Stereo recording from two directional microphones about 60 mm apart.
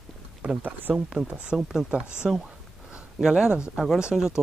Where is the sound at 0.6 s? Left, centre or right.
Right.